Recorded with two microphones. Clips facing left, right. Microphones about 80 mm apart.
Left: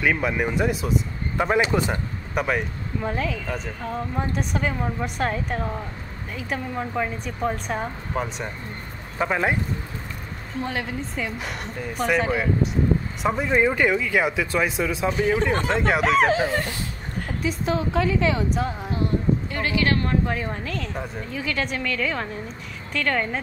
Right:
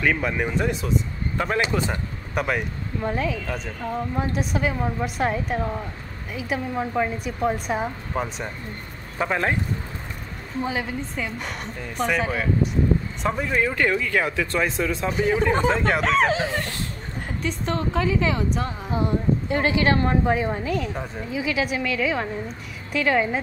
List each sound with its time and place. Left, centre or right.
0.0 s speech: centre
1.4 s speech: centre
2.3 s speech: centre
10.6 s speech: centre
17.4 s speech: centre
18.9 s a woman's voice: right